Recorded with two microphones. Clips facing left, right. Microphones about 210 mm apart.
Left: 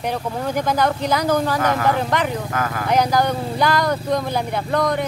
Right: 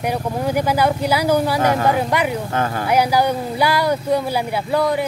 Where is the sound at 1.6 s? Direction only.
30° right (ahead or behind).